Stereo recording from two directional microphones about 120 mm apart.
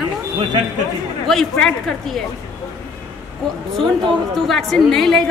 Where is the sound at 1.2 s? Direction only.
5° left (ahead or behind).